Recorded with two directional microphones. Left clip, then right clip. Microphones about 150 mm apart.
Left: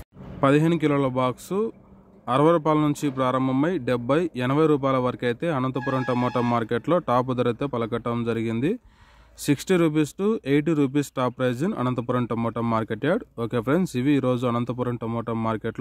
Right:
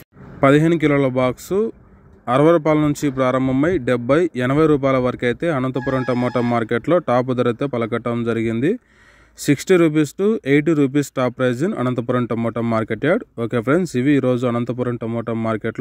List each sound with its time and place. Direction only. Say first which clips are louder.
0.4 s a man's voice: right 6 dB; 30° right (ahead or behind)